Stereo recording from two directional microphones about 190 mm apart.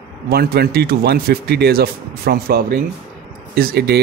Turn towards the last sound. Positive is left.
turn(degrees=-55)  # may be behind; listen again after turning